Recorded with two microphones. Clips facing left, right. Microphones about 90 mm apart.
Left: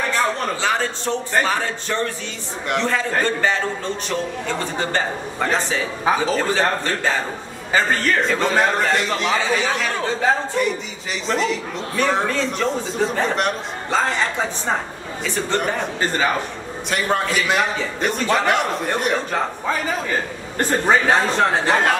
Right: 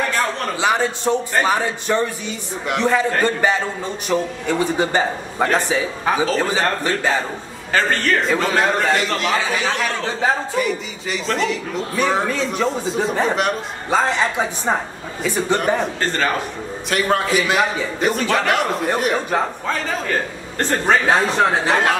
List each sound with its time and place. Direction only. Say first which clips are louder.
0.6 s a man's voice: right 3 dB; 15° right (ahead or behind)
7.7 s a man's voice: right 1 dB; centre (ahead or behind)
15.2 s a man's voice: right 3 dB; 5° right (ahead or behind)
16.0 s a man's voice: even; 10° left (ahead or behind)
16.9 s a man's voice: right 2 dB; centre (ahead or behind)
19.6 s a man's voice: even; 10° left (ahead or behind)